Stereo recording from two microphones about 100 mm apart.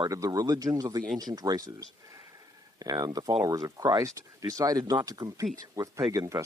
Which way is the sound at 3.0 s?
40° right (ahead or behind).